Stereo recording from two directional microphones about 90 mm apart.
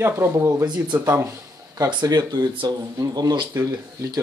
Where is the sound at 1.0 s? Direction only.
35° right (ahead or behind).